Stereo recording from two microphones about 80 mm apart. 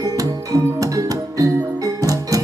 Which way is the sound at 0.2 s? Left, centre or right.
Right.